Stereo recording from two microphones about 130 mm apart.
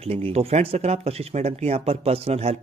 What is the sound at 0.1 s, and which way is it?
Speech, 50° right (ahead or behind).